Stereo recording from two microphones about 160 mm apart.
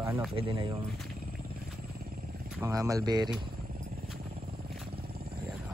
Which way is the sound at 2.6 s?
20° right (ahead or behind).